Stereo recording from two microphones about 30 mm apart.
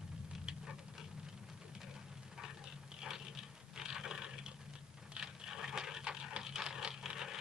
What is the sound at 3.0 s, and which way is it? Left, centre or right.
Patter, centre.